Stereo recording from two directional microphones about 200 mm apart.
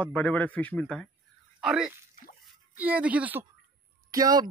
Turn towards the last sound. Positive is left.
turn(degrees=-20)  # may be behind; listen again after turning